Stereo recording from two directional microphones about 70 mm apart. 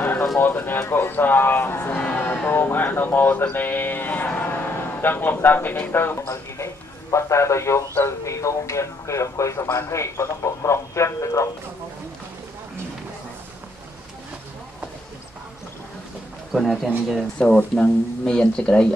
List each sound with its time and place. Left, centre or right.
0.0 s a sound: left
0.4 s speech: left
3.4 s sheep: left
4.4 s music: left
5.9 s speech: left
6.2 s a man's voice: left
16.5 s speech: centre
17.4 s speech: centre